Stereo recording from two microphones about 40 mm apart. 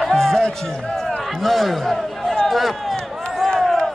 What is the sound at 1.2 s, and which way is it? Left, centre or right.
A man's voice, centre.